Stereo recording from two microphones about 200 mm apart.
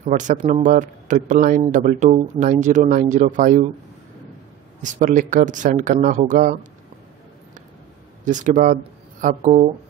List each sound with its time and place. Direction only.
0.0 s speech: 40° right (ahead or behind)
4.8 s speech: 40° right (ahead or behind)
8.3 s speech: 40° right (ahead or behind)